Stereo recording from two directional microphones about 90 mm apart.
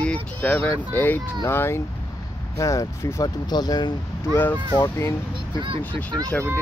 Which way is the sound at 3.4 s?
50° left (ahead or behind).